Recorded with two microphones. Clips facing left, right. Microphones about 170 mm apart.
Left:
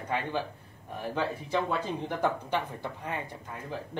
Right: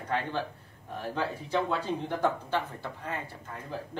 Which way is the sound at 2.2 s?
15° left (ahead or behind).